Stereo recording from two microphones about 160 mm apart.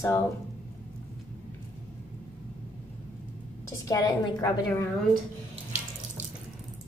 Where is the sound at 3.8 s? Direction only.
25° left (ahead or behind).